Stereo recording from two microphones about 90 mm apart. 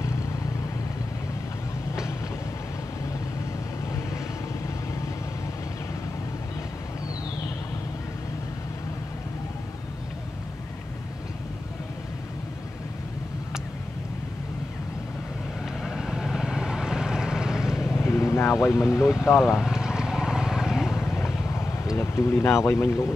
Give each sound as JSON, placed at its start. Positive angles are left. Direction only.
{"t": 15.6, "sound": "vehicle", "side_deg": -5}
{"t": 17.9, "sound": "vehicle", "side_deg": 30}
{"t": 19.3, "sound": "vehicle", "side_deg": -5}
{"t": 21.1, "sound": "vehicle", "side_deg": 30}
{"t": 21.9, "sound": "speech", "side_deg": 30}